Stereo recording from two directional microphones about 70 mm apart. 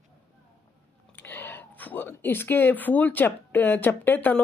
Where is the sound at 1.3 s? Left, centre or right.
Left.